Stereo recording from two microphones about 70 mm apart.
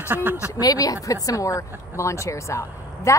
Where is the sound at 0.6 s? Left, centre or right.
Left.